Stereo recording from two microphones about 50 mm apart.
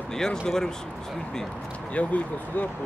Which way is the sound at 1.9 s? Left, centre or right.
Left.